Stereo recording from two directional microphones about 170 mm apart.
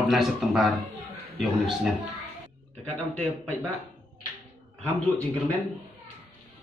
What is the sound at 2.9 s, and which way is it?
Speech, 5° left (ahead or behind).